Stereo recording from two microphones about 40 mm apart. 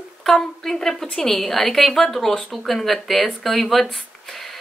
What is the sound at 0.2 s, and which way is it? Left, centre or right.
A woman's voice, centre.